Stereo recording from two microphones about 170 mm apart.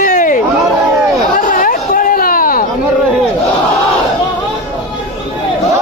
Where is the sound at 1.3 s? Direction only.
50° left (ahead or behind).